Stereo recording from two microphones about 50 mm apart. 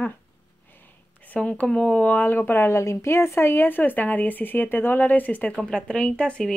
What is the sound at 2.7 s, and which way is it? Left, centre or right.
Speech, left.